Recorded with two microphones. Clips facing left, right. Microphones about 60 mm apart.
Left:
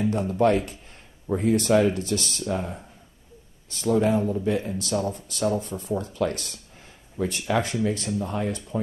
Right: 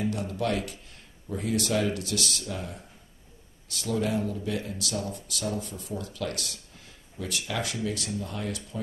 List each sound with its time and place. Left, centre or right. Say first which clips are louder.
0.0 s speech: left 8 dB; left
3.8 s speech: left 7 dB; left